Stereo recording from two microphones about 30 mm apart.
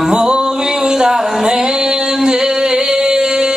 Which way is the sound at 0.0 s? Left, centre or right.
Right.